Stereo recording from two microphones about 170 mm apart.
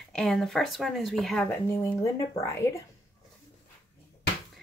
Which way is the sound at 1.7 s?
15° left (ahead or behind).